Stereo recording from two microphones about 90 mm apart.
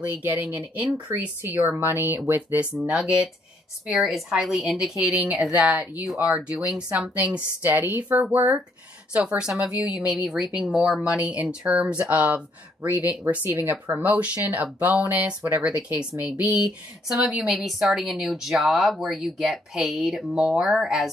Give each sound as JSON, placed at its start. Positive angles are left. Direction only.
{"t": 0.0, "sound": "speech", "side_deg": -20}
{"t": 2.7, "sound": "a woman's voice", "side_deg": -10}
{"t": 9.1, "sound": "speech", "side_deg": -15}
{"t": 13.5, "sound": "speech", "side_deg": -35}
{"t": 14.0, "sound": "a woman's voice", "side_deg": -15}